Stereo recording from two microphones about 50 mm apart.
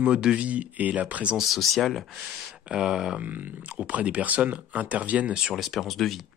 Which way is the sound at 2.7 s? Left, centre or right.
Centre.